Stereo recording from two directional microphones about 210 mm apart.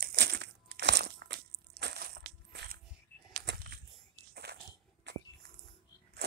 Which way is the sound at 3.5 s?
55° right (ahead or behind).